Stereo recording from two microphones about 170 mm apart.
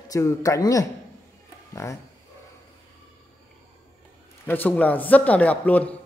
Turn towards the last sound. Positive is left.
turn(degrees=10)  # may be behind; listen again after turning